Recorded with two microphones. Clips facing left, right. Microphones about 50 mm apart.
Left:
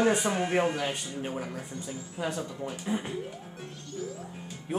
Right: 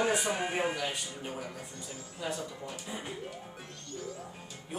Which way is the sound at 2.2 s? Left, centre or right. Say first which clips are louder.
Left 4 dB; left.